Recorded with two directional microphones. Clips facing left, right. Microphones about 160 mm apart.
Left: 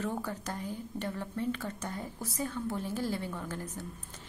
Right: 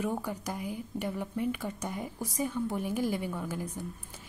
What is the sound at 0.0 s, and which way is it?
Speech, 10° right (ahead or behind).